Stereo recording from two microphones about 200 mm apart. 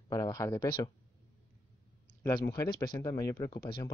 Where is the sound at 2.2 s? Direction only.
15° left (ahead or behind).